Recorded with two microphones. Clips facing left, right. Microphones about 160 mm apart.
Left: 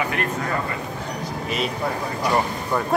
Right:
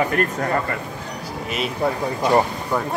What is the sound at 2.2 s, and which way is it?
Speech, 20° right (ahead or behind).